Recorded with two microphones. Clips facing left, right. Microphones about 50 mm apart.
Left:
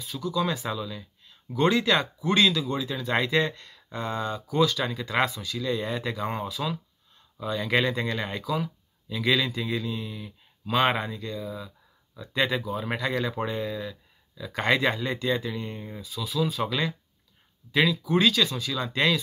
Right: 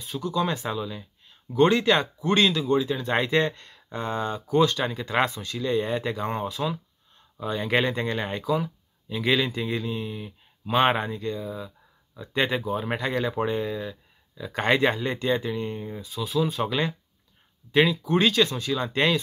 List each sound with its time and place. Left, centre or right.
0.2 s speech: right
3.9 s speech: right
9.8 s speech: right
18.0 s speech: centre